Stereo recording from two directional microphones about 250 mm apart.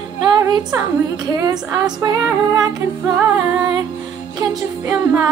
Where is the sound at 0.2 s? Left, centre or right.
Centre.